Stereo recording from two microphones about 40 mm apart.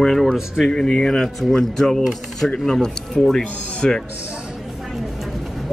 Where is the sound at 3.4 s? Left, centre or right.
Left.